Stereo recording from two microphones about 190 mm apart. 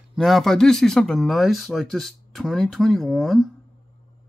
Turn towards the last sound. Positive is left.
turn(degrees=0)  # may be behind; listen again after turning